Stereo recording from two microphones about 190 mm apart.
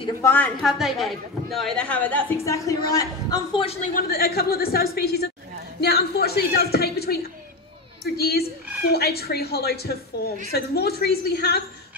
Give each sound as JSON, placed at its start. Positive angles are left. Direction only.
{"t": 0.2, "sound": "a man's voice", "side_deg": 10}
{"t": 3.6, "sound": "a man's voice", "side_deg": 30}
{"t": 3.9, "sound": "a woman's voice", "side_deg": 55}
{"t": 8.2, "sound": "a woman's voice", "side_deg": 55}